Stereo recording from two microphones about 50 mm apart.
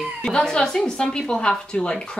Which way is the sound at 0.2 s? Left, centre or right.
Centre.